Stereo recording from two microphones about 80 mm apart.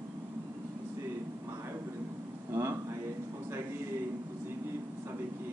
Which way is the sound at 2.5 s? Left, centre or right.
Right.